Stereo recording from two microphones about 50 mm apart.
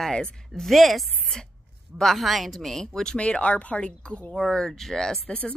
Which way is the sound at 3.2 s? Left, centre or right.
Left.